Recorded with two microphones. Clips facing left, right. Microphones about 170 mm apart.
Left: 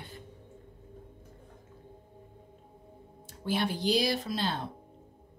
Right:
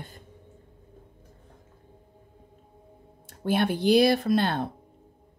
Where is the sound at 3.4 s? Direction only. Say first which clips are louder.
Right 7 dB; 55° right (ahead or behind).